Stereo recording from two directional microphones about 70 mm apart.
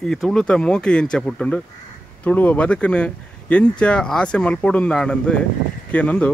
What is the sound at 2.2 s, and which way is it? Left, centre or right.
Speech, left.